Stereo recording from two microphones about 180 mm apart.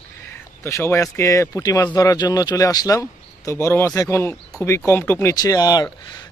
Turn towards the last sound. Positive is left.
turn(degrees=20)  # may be behind; listen again after turning